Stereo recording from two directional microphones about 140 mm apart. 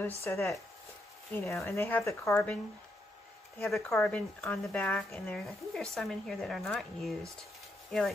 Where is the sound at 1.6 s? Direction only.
15° left (ahead or behind).